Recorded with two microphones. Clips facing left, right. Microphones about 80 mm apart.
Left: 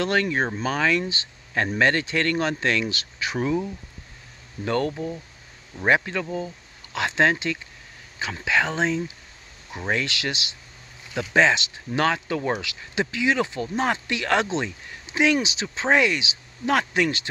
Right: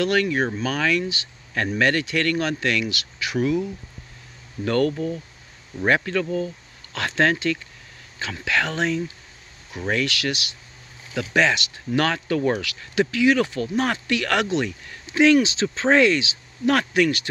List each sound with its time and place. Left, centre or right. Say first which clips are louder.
0.0 s speech: right 2 dB; left